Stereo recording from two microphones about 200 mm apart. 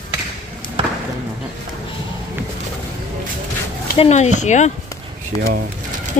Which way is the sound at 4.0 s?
35° left (ahead or behind).